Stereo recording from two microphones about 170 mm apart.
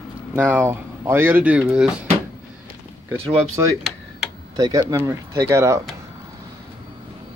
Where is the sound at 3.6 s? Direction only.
20° right (ahead or behind).